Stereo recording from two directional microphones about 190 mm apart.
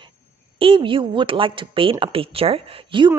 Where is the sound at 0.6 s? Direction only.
25° right (ahead or behind).